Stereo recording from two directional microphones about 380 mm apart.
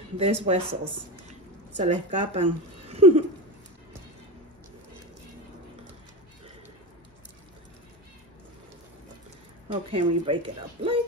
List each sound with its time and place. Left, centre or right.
0.2 s speech: centre
1.8 s speech: centre
2.9 s a sound: centre
9.7 s speech: centre